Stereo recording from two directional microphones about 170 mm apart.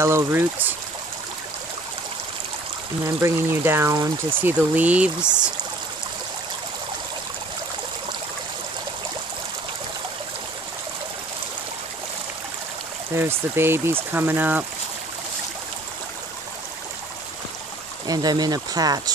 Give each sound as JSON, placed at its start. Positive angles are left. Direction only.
{"t": 0.0, "sound": "speech", "side_deg": -15}
{"t": 3.2, "sound": "speech", "side_deg": -15}
{"t": 13.1, "sound": "speech", "side_deg": -15}
{"t": 18.0, "sound": "speech", "side_deg": -20}